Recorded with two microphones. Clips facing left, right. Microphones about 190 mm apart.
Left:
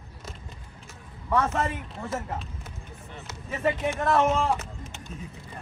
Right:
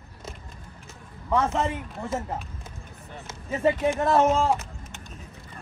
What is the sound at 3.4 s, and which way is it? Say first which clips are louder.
Speech: right 4 dB; 30° right (ahead or behind).